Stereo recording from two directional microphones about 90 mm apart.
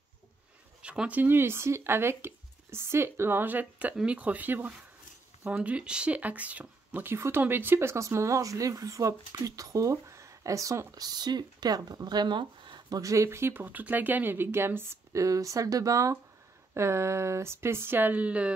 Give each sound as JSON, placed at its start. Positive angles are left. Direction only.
{"t": 0.8, "sound": "speech", "side_deg": -15}
{"t": 13.0, "sound": "speech", "side_deg": -35}